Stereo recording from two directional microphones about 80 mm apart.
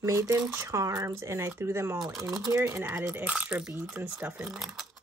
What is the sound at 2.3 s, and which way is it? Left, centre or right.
Speech, right.